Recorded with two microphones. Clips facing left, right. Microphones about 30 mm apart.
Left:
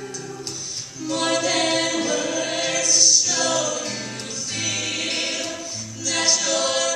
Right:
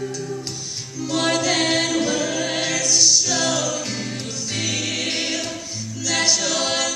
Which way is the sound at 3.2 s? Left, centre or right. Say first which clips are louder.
Right 1 dB; centre.